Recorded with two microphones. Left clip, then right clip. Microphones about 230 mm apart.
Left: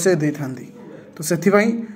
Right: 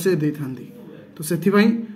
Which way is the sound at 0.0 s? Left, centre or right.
Centre.